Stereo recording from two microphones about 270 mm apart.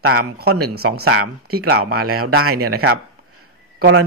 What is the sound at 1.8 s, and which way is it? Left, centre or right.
Speech, right.